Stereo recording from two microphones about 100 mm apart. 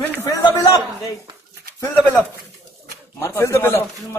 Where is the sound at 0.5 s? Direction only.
40° left (ahead or behind).